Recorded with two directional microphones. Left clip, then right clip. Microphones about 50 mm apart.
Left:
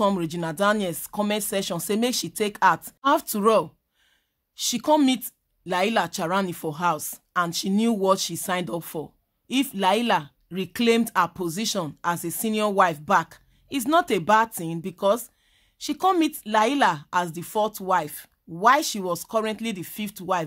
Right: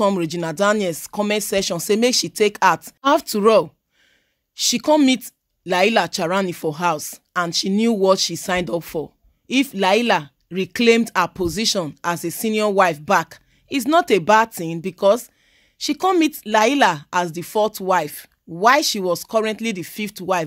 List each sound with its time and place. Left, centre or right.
0.2 s speech: centre
3.2 s speech: right
5.0 s speech: right
5.7 s speech: right
6.5 s speech: right
7.4 s speech: right
8.5 s speech: right
17.3 s speech: right